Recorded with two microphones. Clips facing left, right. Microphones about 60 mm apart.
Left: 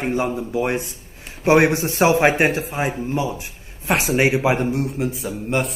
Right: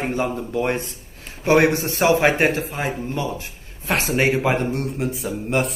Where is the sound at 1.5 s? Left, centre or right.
Centre.